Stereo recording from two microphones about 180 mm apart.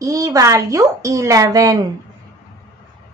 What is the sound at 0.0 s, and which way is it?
A woman's voice, 20° right (ahead or behind).